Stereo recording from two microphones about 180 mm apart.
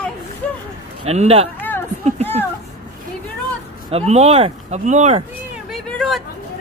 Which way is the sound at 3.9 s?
35° right (ahead or behind).